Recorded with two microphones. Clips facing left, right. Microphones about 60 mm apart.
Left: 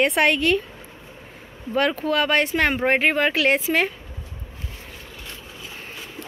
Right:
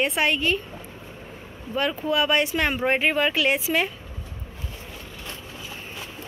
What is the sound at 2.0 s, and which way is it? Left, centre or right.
Speech, left.